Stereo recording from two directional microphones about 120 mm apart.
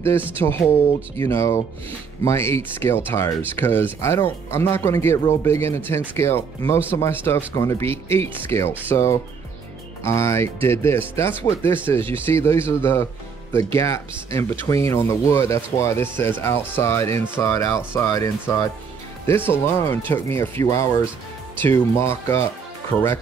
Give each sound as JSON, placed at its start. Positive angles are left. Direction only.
{"t": 0.4, "sound": "speech", "side_deg": 20}